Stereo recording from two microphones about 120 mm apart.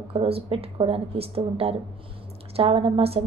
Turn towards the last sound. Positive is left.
turn(degrees=-55)  # may be behind; listen again after turning